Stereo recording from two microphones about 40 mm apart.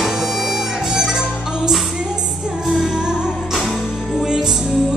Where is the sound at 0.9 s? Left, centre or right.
Centre.